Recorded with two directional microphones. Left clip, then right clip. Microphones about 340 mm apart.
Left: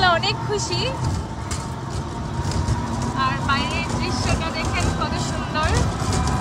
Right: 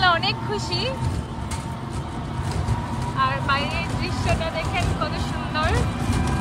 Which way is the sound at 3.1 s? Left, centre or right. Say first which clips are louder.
Even; centre.